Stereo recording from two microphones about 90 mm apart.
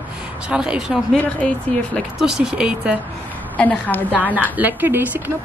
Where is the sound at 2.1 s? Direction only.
5° right (ahead or behind).